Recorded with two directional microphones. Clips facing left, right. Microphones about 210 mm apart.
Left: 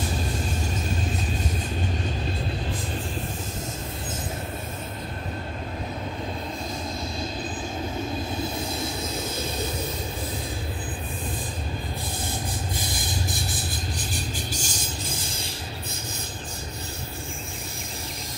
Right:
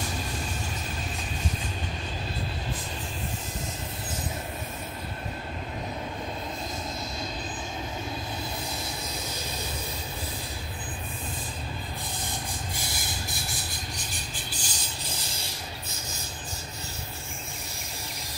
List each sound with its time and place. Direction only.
14.5 s vehicle: 45° left (ahead or behind)